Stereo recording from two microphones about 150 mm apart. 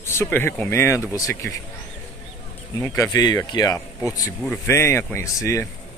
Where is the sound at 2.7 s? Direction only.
20° left (ahead or behind).